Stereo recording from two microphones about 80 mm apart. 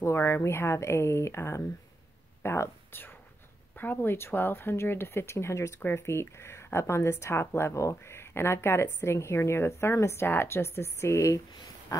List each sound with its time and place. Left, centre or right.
0.0 s speech: left
11.9 s pig: left